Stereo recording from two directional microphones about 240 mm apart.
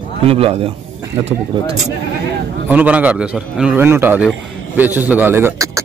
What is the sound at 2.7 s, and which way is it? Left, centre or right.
A man's voice, centre.